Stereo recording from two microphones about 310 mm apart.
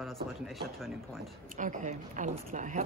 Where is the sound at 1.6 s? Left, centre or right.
Right.